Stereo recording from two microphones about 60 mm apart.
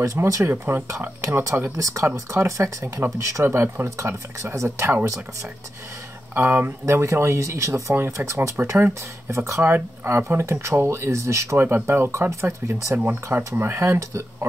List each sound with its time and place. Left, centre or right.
0.0 s speech: right
3.5 s speech: right
6.3 s speech: right
6.9 s speech: right
7.9 s speech: right
8.6 s speech: right
9.6 s speech: right
10.2 s speech: right
13.4 s speech: right